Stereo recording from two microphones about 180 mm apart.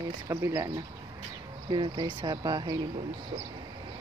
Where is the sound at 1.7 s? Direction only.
25° right (ahead or behind).